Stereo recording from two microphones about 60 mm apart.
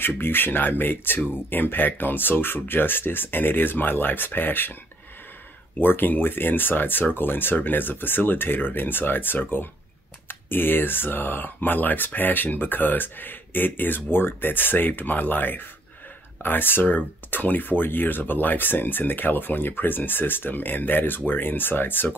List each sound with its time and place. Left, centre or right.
0.0 s speech: left
5.8 s speech: left